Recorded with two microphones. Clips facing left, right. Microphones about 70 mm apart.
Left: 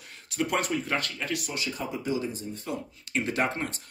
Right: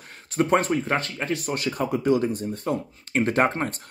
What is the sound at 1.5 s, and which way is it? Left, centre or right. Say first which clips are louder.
Speech: right 7 dB; right.